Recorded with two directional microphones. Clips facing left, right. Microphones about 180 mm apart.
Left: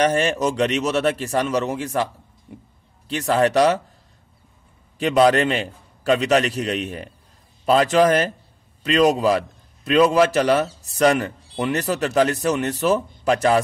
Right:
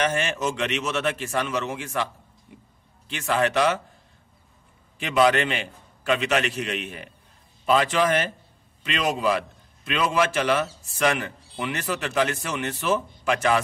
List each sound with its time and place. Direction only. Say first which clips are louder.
0.0 s a man's voice: left 6 dB; 35° left (ahead or behind)
4.9 s a man's voice: left 4 dB; 40° left (ahead or behind)